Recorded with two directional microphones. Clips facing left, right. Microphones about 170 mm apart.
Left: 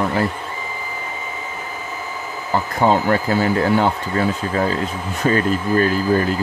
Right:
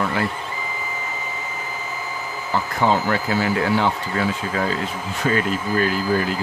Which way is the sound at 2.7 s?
45° left (ahead or behind).